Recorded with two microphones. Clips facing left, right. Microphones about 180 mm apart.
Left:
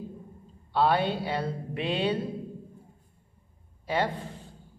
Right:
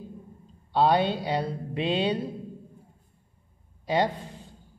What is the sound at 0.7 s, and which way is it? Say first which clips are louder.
Speech: right 2 dB; 20° right (ahead or behind).